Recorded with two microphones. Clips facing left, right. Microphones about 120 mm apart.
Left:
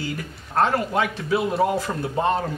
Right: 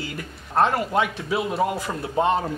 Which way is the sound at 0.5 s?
Centre (ahead or behind).